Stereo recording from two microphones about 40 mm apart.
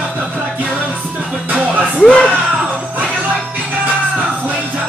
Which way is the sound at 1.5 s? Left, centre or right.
Right.